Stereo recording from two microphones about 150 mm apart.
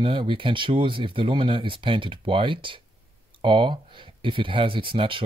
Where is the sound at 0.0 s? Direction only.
35° right (ahead or behind).